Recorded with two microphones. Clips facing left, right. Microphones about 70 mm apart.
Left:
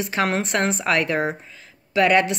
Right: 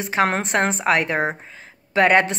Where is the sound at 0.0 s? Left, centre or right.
Right.